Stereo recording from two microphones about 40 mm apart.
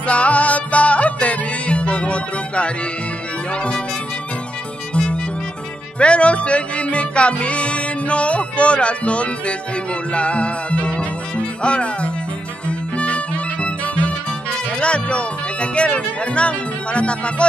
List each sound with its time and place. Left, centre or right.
0.0 s music: left
3.5 s speech: left
4.9 s music: left
5.9 s speech: left
10.1 s music: left
14.8 s speech: left